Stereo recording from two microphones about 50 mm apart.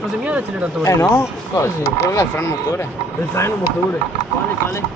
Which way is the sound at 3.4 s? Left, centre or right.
Left.